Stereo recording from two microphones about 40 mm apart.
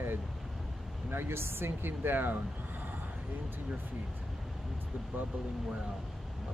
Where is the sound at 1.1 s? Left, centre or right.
Right.